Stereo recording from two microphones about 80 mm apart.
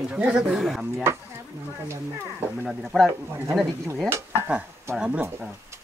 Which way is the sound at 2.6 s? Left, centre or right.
Centre.